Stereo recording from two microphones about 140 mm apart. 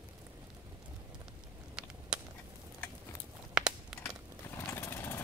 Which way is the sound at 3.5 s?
5° right (ahead or behind).